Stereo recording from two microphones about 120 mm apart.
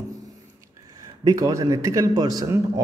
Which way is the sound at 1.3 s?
30° right (ahead or behind).